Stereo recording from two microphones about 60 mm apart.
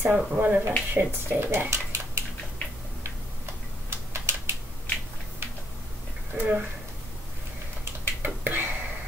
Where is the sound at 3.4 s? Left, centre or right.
Right.